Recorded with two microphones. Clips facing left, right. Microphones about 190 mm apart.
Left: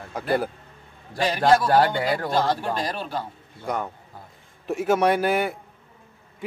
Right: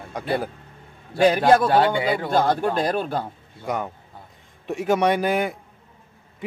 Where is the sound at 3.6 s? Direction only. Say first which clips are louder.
Right 1 dB; centre (ahead or behind).